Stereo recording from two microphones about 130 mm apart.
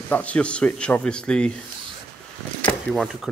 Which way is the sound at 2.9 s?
5° left (ahead or behind).